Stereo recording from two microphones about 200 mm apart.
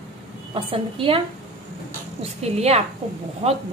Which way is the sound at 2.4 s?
30° right (ahead or behind).